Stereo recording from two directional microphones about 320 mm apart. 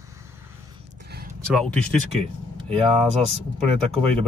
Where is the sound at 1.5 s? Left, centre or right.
Centre.